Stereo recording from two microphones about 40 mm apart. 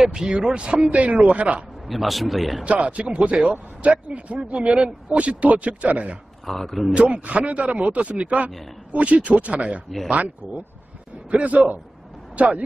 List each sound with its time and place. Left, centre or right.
0.0 s speech: centre
0.8 s a man's voice: right
1.9 s a man's voice: centre
2.6 s a man's voice: right
6.4 s a man's voice: centre
6.9 s a man's voice: right